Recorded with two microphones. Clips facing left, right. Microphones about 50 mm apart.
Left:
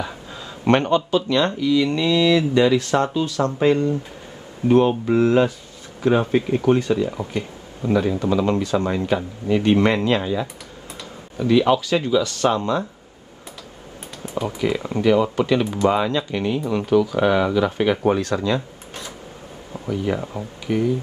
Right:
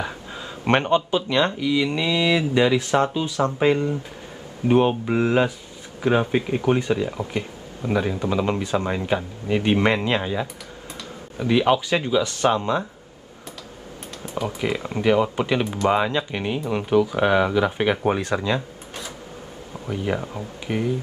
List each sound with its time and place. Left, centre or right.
0.7 s speech: right
14.6 s speech: centre
20.4 s speech: right